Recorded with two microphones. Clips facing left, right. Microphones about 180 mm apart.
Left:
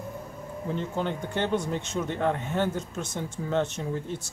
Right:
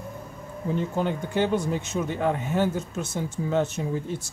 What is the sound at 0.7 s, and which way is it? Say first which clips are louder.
Speech: right 4 dB; 10° right (ahead or behind).